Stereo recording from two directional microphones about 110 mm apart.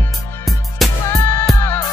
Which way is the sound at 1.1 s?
25° left (ahead or behind).